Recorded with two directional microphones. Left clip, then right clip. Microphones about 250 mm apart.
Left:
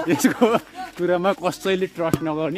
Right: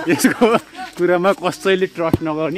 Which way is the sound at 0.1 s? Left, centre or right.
Centre.